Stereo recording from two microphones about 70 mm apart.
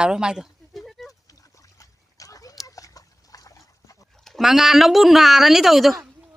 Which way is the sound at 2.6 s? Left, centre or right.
Left.